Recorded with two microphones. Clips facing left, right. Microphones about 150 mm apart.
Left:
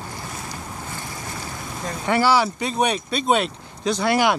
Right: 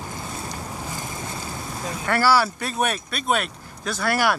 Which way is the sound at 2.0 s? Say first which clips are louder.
Left 1 dB; 15° left (ahead or behind).